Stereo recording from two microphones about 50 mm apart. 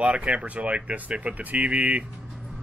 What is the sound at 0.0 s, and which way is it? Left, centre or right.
Speech, right.